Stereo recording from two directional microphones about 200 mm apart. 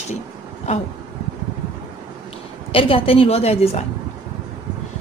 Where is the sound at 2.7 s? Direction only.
25° left (ahead or behind).